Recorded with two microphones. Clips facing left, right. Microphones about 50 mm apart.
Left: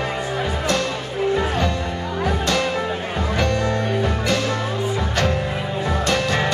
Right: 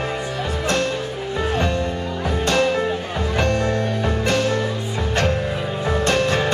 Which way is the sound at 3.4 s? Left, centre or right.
Right.